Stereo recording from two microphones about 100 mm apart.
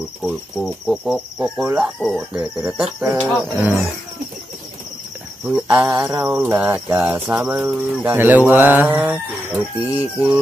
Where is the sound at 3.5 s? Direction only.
25° right (ahead or behind).